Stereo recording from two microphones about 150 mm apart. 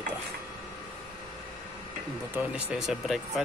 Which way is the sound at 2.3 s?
5° right (ahead or behind).